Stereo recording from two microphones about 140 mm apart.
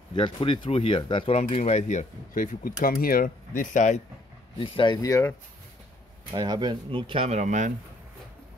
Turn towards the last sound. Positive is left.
turn(degrees=-60)  # may be behind; listen again after turning